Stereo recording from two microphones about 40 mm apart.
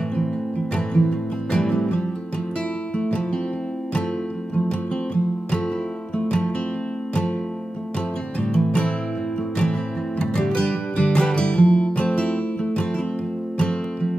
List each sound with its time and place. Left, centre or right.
0.7 s music: left
4.6 s music: left
8.5 s music: centre